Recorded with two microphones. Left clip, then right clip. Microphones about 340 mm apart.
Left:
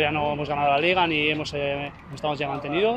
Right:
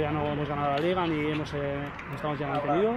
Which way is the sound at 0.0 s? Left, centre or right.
Left.